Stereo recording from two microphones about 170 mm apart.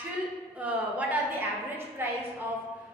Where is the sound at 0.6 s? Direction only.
10° right (ahead or behind).